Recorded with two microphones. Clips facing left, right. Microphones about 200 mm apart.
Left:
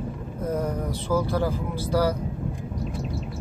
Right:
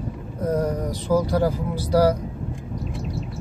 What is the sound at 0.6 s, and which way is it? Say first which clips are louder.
Speech: right 3 dB; 10° right (ahead or behind).